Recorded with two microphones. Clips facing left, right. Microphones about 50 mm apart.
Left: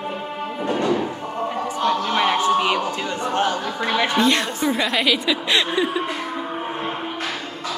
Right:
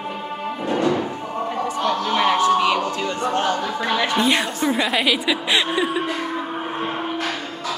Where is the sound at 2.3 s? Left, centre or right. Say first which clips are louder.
Right 2 dB; left.